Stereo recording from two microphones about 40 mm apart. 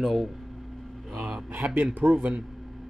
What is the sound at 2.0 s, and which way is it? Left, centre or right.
Speech, right.